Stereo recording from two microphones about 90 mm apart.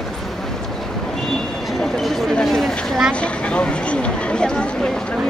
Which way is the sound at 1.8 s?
5° left (ahead or behind).